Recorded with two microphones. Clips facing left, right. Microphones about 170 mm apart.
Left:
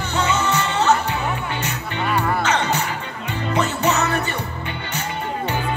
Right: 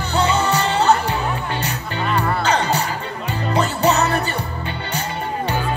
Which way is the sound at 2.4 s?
35° right (ahead or behind).